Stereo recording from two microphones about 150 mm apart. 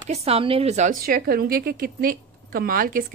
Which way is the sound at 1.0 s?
85° right.